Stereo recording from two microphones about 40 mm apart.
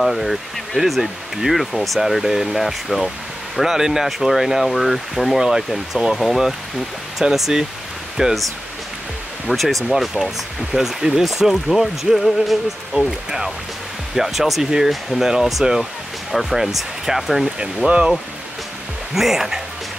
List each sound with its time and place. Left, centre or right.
0.0 s speech: centre
5.4 s speech: centre
6.1 s speech: centre
9.5 s speech: centre
10.7 s speech: centre
14.1 s speech: centre
14.9 s speech: centre
17.8 s speech: right
19.1 s speech: centre